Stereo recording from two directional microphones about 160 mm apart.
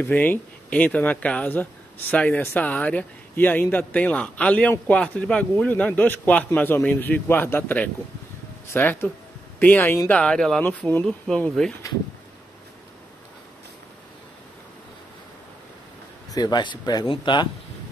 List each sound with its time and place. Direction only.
0.0 s a man's voice: 10° left (ahead or behind)
16.3 s speech: 25° left (ahead or behind)